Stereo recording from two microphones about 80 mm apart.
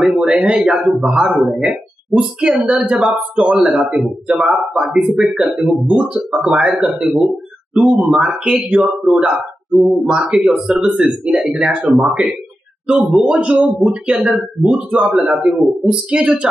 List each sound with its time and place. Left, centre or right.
0.2 s speech: centre